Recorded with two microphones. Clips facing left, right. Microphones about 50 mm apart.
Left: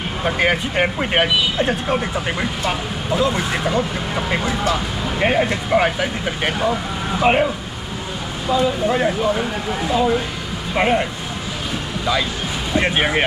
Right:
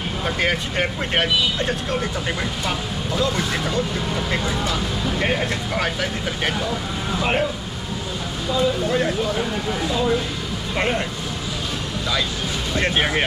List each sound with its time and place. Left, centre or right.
0.2 s speech: centre
8.5 s speech: left
12.7 s speech: centre